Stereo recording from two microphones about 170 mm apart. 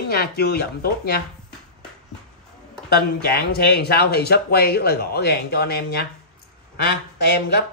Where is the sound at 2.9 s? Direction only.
70° left (ahead or behind).